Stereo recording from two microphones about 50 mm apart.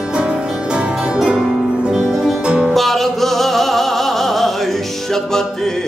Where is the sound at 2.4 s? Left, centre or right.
Right.